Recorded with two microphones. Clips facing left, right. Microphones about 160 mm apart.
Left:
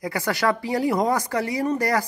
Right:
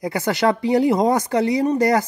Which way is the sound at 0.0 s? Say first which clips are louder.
Right 4 dB; 20° right (ahead or behind).